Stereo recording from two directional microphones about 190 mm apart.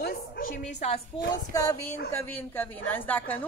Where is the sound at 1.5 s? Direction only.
20° left (ahead or behind).